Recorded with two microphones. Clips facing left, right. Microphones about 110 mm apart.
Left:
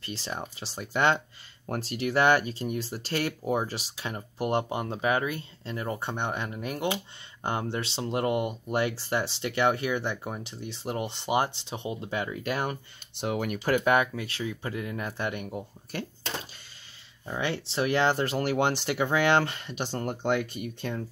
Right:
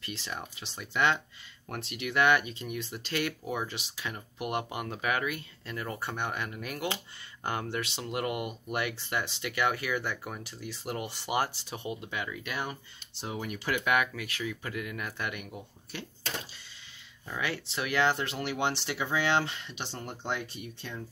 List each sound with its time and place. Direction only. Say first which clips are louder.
0.0 s speech: left 3 dB; 30° left (ahead or behind)
12.6 s speech: left 6 dB; 65° left (ahead or behind)
13.7 s speech: left 5 dB; 40° left (ahead or behind)
17.3 s speech: left 4 dB; 30° left (ahead or behind); by 21.0 s 55° left (ahead or behind)